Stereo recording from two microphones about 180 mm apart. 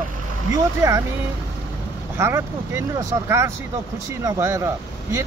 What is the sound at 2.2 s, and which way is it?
Speech, 15° right (ahead or behind).